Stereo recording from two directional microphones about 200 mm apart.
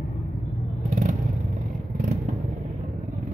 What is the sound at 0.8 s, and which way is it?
Vehicle, 40° right (ahead or behind).